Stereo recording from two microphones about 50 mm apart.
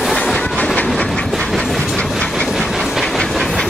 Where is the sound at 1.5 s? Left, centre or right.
Centre.